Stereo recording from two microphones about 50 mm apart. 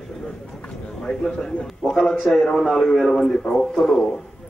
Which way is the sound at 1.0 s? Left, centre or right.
Centre.